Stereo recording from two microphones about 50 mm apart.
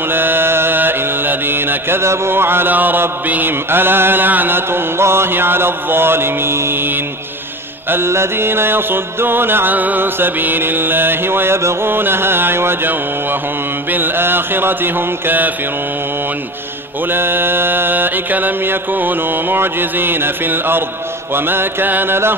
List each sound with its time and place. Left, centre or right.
0.1 s mantra: right
2.7 s music: right
7.9 s music: right
17.1 s music: right